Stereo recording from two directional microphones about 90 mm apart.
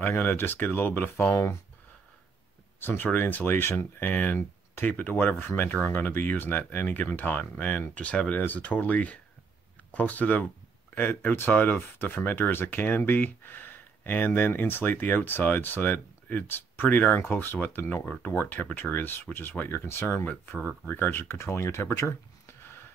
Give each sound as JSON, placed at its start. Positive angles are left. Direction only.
{"t": 0.0, "sound": "speech", "side_deg": 25}
{"t": 2.8, "sound": "speech", "side_deg": 25}
{"t": 20.2, "sound": "speech", "side_deg": 15}